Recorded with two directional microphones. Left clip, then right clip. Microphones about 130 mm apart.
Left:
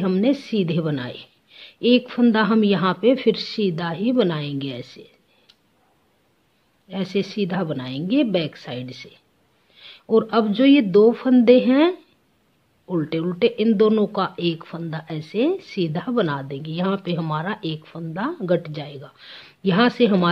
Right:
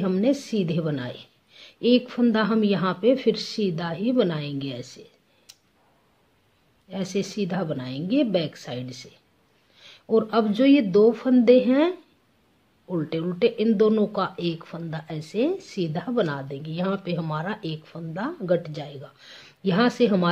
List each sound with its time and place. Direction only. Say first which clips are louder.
0.0 s speech: left 2 dB; 25° left (ahead or behind)
1.5 s speech: left 3 dB; 20° left (ahead or behind)
6.9 s speech: left 4 dB; 25° left (ahead or behind)